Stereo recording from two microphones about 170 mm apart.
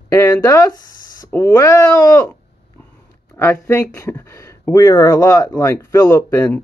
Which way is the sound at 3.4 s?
15° left (ahead or behind).